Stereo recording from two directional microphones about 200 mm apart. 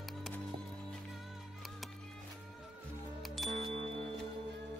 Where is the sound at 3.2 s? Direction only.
Centre (ahead or behind).